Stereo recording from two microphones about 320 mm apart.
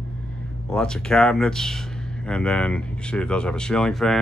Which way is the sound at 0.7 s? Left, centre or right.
Centre.